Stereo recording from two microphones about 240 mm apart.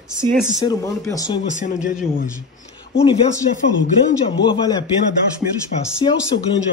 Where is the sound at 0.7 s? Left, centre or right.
Centre.